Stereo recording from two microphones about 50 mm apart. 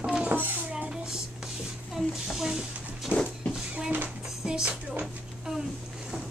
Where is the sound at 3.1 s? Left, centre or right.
Centre.